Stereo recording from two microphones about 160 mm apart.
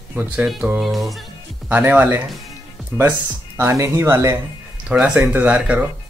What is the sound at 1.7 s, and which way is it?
Speech, 10° right (ahead or behind).